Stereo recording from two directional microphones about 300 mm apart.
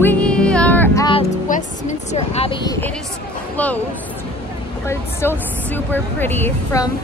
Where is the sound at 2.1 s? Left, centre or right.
Left; by 3.7 s centre.